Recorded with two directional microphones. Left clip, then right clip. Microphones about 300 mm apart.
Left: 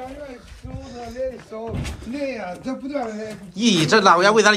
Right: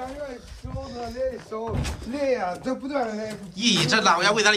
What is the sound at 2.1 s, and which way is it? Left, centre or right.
Speech, right.